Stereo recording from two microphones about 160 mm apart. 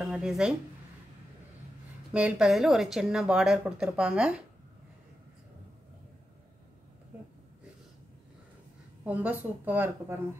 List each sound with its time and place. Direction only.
0.0 s speech: centre (ahead or behind)
2.1 s speech: 5° right (ahead or behind)
9.0 s a woman's voice: 10° right (ahead or behind)